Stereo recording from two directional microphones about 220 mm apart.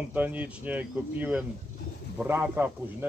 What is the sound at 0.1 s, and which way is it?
A man's voice, 5° right (ahead or behind).